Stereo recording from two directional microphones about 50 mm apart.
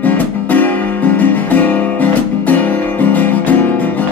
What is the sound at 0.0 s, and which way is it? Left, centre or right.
Music, left.